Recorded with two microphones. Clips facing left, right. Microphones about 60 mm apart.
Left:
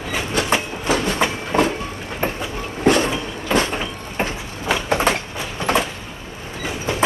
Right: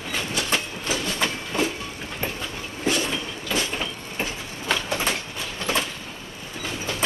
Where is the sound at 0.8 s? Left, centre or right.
Left.